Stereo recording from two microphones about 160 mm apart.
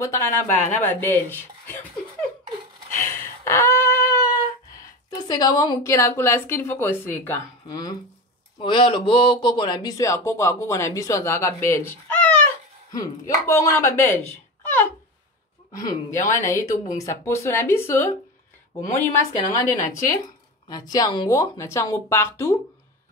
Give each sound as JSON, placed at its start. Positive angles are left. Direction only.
{"t": 0.0, "sound": "speech", "side_deg": 20}
{"t": 0.6, "sound": "speech", "side_deg": 50}
{"t": 0.8, "sound": "speech", "side_deg": 15}
{"t": 3.0, "sound": "a sound", "side_deg": 15}
{"t": 5.3, "sound": "speech", "side_deg": 25}
{"t": 7.6, "sound": "speech", "side_deg": 25}
{"t": 12.9, "sound": "speech", "side_deg": 20}
{"t": 15.8, "sound": "speech", "side_deg": 20}